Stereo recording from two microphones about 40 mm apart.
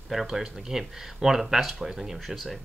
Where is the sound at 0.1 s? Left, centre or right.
Centre.